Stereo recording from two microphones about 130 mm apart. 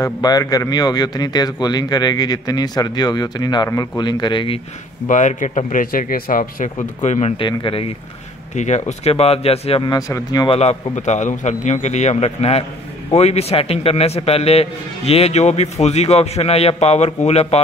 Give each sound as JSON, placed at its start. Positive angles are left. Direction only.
{"t": 0.0, "sound": "a man's voice", "side_deg": 30}
{"t": 5.0, "sound": "a man's voice", "side_deg": 75}
{"t": 5.8, "sound": "speech", "side_deg": 90}
{"t": 7.3, "sound": "a man's voice", "side_deg": 40}
{"t": 8.5, "sound": "a man's voice", "side_deg": 65}
{"t": 9.8, "sound": "speech", "side_deg": 25}
{"t": 10.5, "sound": "a man's voice", "side_deg": 55}